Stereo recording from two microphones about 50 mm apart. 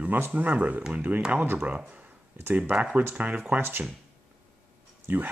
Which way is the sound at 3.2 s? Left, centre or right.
Right.